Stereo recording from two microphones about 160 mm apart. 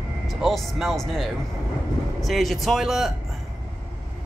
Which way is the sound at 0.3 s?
Centre (ahead or behind).